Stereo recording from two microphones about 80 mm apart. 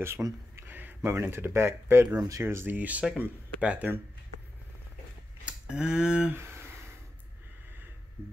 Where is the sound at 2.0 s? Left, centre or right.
Right.